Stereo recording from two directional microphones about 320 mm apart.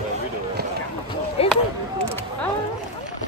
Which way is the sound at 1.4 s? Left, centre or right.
Centre.